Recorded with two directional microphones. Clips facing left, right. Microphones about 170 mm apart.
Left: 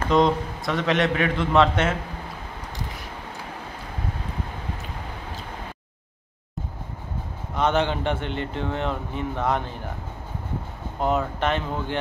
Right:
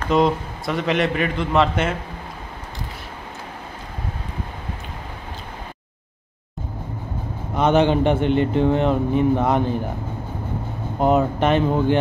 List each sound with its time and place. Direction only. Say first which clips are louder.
0.1 s a man's voice: right 2 dB; 5° right (ahead or behind)
7.5 s speech: right 6 dB; 10° right (ahead or behind)
11.0 s speech: right 6 dB; 15° right (ahead or behind)